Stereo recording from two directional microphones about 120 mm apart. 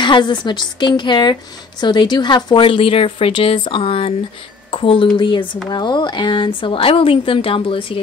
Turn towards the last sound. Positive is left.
turn(degrees=50)  # may be behind; listen again after turning